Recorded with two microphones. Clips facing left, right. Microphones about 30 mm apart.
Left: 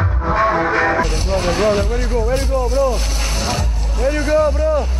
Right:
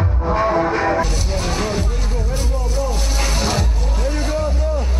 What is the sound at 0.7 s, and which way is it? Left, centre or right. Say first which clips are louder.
Speech: left 2 dB; left.